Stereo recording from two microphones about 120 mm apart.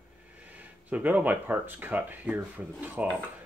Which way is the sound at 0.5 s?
15° right (ahead or behind).